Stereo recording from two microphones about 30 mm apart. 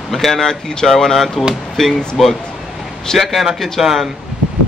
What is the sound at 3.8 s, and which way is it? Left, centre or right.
Speech, centre.